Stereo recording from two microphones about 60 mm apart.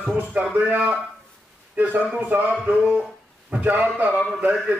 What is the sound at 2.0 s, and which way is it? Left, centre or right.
A man's voice, right.